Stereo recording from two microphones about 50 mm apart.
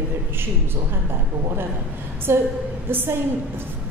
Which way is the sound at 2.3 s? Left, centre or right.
Right.